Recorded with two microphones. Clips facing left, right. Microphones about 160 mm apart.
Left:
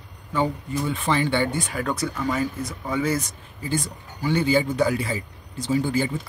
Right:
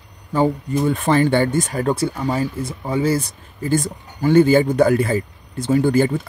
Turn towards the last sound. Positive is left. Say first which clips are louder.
# right 7 dB
turn(degrees=-50)  # may be behind; listen again after turning